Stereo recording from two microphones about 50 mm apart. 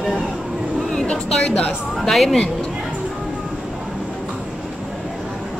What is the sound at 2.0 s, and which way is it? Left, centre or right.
Speech, centre.